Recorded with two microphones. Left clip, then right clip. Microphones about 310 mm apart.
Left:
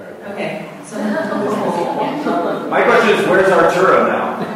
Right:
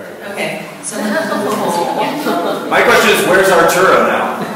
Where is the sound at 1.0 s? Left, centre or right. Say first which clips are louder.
Right 3 dB; centre.